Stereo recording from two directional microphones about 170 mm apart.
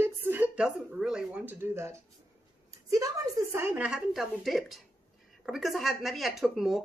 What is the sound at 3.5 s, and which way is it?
Speech, 10° right (ahead or behind).